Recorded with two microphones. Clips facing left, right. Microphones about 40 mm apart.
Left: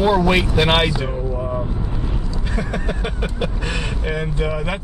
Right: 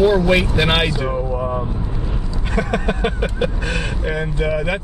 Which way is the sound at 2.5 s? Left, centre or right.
Right.